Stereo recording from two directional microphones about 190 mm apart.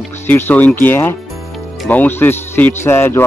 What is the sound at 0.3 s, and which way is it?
Speech, 10° left (ahead or behind).